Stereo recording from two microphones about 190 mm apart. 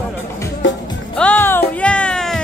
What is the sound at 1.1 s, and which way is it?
Music, 5° left (ahead or behind).